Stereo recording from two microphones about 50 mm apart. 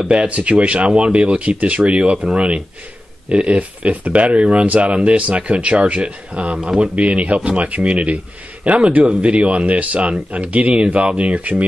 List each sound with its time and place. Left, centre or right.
0.1 s speech: right